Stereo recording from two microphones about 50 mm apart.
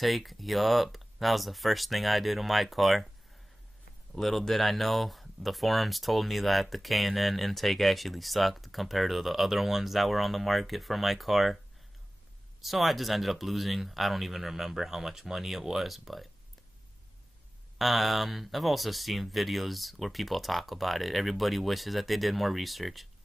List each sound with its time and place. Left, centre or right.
0.0 s speech: centre
4.1 s speech: centre
12.6 s speech: centre
17.7 s speech: centre